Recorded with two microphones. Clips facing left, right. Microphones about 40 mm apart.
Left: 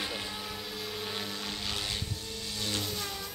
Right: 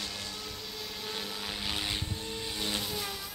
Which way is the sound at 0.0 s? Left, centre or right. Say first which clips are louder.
Left 3 dB; left.